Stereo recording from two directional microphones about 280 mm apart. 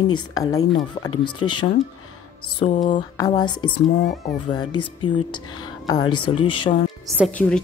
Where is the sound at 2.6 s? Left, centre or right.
Left.